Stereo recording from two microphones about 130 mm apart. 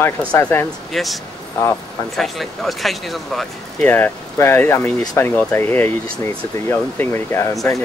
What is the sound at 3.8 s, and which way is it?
Speech, 15° left (ahead or behind).